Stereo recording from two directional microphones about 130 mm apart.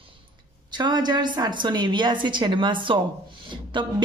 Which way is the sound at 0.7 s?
35° right (ahead or behind).